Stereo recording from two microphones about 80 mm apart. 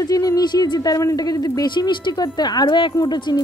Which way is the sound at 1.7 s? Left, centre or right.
Left.